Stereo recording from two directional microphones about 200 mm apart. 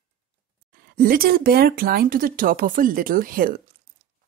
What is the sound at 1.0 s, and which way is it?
Speech, 45° right (ahead or behind).